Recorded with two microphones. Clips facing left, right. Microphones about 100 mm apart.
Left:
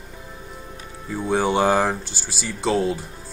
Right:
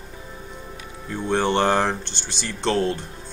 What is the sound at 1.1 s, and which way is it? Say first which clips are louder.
Speech: left 1 dB; 5° left (ahead or behind).